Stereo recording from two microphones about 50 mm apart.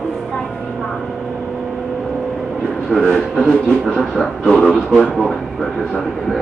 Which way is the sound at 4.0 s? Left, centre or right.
Centre.